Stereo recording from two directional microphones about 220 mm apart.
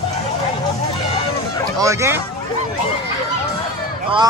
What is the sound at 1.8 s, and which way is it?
Speech, 15° right (ahead or behind).